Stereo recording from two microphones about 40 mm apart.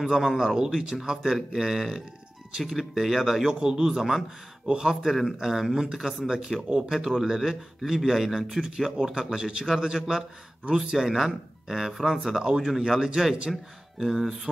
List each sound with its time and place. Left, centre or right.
0.0 s a man's voice: centre
3.5 s a man's voice: centre